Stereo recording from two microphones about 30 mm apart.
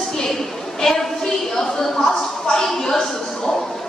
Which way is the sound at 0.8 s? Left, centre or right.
Centre.